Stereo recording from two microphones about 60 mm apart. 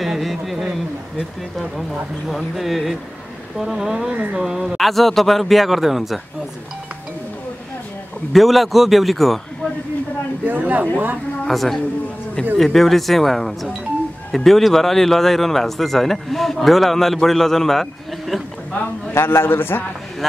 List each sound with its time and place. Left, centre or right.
0.0 s a sound: centre
2.2 s speech: centre
4.1 s speech: right; by 6.2 s centre
8.3 s speech: centre
10.4 s speech: right
11.4 s speech: centre
19.1 s a man's voice: left